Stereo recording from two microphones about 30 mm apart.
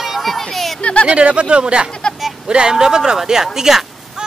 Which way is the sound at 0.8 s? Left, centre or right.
Left.